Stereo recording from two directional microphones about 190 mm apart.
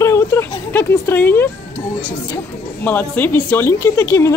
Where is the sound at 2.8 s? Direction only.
10° left (ahead or behind).